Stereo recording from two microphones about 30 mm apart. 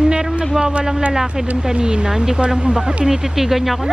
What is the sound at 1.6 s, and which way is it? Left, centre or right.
Speech, right.